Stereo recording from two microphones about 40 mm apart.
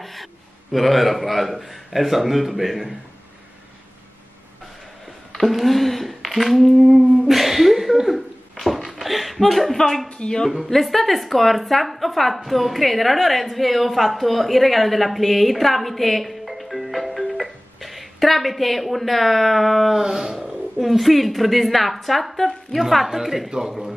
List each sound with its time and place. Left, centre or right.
0.0 s a man's voice: centre
5.4 s speech: centre
10.0 s speech: left
10.6 s a man's voice: centre